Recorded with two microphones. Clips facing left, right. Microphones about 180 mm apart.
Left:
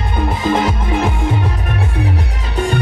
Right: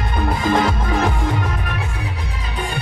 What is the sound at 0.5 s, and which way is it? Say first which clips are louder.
Music: left 1 dB; 25° left (ahead or behind).